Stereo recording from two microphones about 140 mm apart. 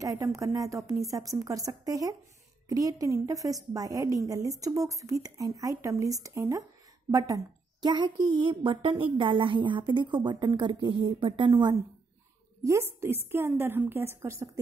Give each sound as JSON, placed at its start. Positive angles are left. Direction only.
{"t": 0.0, "sound": "a woman's voice", "side_deg": -20}
{"t": 12.6, "sound": "a woman's voice", "side_deg": -20}